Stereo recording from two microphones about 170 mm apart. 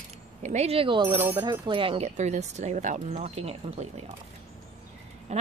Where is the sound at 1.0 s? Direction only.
10° right (ahead or behind).